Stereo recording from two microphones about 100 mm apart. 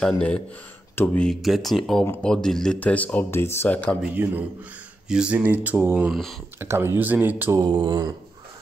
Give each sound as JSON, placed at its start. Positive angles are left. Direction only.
{"t": 0.9, "sound": "speech", "side_deg": 15}
{"t": 1.4, "sound": "speech", "side_deg": 0}
{"t": 4.0, "sound": "a man's voice", "side_deg": -15}
{"t": 5.0, "sound": "a sound", "side_deg": -10}
{"t": 5.6, "sound": "speech", "side_deg": -20}
{"t": 6.0, "sound": "speech", "side_deg": 0}
{"t": 6.6, "sound": "speech", "side_deg": -25}
{"t": 7.6, "sound": "speech", "side_deg": -50}